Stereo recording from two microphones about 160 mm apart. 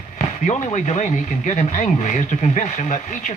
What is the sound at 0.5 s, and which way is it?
Speech, 45° left (ahead or behind).